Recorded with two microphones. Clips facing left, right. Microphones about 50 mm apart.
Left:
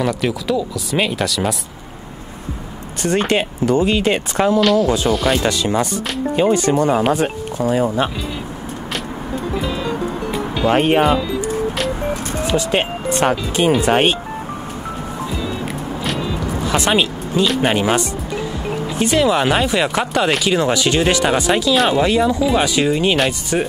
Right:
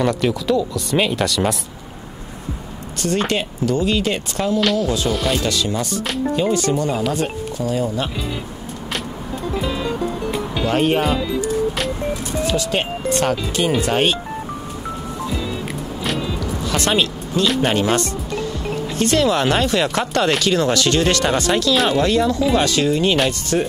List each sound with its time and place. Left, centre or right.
0.0 s speech: centre
3.0 s speech: left
4.6 s speech: centre
5.3 s speech: left
9.6 s music: centre
10.7 s speech: left
12.4 s speech: centre
16.0 s music: centre
16.3 s music: centre
17.6 s speech: centre
23.1 s speech: centre